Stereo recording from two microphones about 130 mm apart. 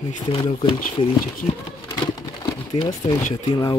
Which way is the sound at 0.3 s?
40° left (ahead or behind).